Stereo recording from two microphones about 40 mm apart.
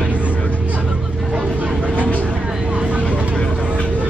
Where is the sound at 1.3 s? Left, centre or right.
Right.